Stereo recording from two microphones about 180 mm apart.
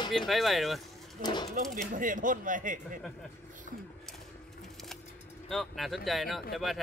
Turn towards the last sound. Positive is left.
turn(degrees=0)  # may be behind; listen again after turning